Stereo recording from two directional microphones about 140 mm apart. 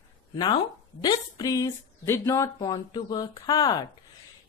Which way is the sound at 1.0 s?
25° left (ahead or behind).